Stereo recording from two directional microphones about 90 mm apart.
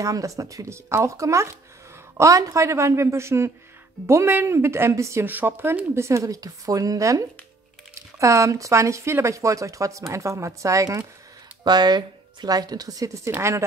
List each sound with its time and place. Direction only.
0.0 s speech: 35° right (ahead or behind)
5.2 s speech: 20° right (ahead or behind); by 11.1 s 40° right (ahead or behind)
11.6 s speech: 50° right (ahead or behind); by 13.7 s 30° right (ahead or behind)